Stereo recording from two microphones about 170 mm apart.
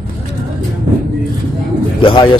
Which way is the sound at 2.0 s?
30° left (ahead or behind).